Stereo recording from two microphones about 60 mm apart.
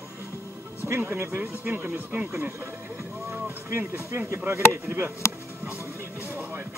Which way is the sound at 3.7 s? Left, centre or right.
Right.